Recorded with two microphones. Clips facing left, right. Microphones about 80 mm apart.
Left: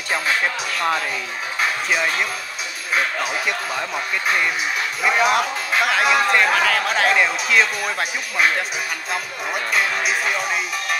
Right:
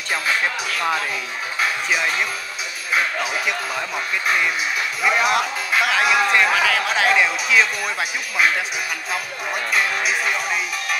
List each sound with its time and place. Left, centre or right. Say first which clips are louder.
0.7 s speech: left 1 dB; centre
3.3 s speech: even; centre